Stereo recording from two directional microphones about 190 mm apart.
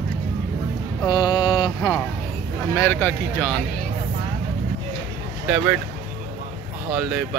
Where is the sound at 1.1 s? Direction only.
20° left (ahead or behind).